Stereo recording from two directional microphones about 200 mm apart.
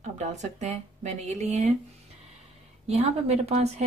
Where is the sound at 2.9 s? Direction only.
30° right (ahead or behind).